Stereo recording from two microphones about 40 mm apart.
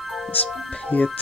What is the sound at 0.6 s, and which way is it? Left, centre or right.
Music, left.